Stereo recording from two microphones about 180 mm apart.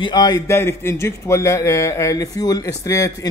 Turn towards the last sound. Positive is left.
turn(degrees=15)  # may be behind; listen again after turning